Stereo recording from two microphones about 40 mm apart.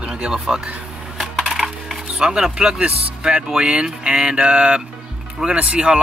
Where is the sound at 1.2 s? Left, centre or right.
Centre.